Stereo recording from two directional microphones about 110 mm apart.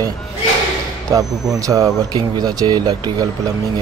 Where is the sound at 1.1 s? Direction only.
30° right (ahead or behind).